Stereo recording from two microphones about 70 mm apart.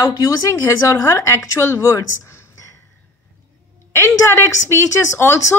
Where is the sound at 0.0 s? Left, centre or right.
Left.